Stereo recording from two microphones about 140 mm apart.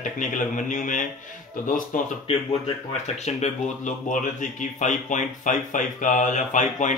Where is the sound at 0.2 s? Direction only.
65° left (ahead or behind).